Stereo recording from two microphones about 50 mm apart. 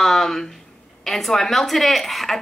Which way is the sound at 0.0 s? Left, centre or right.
Centre.